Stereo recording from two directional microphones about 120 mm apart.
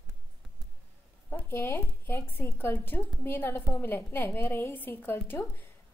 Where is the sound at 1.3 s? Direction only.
20° left (ahead or behind).